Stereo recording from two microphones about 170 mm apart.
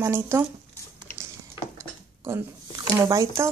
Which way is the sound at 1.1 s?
15° right (ahead or behind).